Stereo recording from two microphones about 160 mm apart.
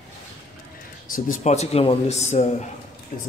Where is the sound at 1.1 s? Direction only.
50° left (ahead or behind).